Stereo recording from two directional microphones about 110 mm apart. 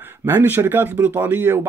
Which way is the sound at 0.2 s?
20° right (ahead or behind).